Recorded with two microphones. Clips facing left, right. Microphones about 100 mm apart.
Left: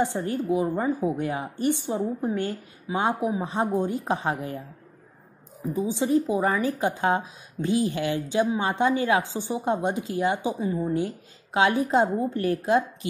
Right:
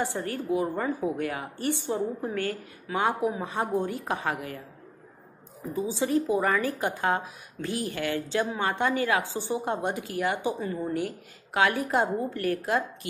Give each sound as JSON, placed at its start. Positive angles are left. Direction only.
{"t": 0.0, "sound": "a woman's voice", "side_deg": 20}
{"t": 5.9, "sound": "a woman's voice", "side_deg": 20}